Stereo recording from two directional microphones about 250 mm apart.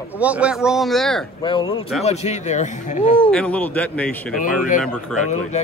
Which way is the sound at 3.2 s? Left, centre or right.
Centre.